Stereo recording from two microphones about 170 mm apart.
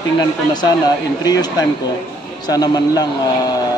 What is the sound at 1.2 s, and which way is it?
Speech, 20° left (ahead or behind).